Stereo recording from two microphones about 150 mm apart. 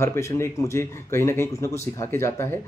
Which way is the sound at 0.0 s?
15° left (ahead or behind).